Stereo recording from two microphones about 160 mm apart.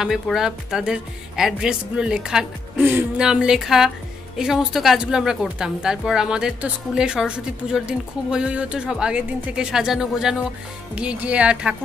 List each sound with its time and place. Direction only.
0.0 s a woman's voice: 5° right (ahead or behind)